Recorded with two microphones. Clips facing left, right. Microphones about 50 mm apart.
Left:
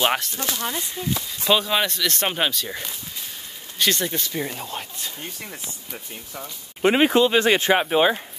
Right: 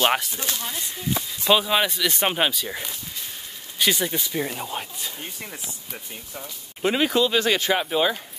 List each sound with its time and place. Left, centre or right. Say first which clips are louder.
0.0 s speech: right 1 dB; centre
0.5 s speech: left 5 dB; left
1.4 s speech: right 1 dB; centre
6.8 s speech: left 4 dB; left